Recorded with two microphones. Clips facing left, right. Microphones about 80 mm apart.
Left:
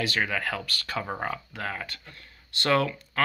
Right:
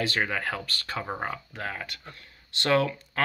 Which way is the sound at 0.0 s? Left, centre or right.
Right.